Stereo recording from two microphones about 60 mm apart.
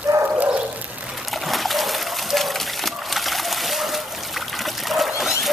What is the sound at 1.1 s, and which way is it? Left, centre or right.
Water, centre.